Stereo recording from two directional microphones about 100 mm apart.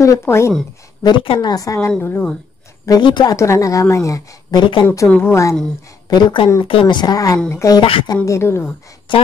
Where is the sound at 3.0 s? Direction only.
45° left (ahead or behind).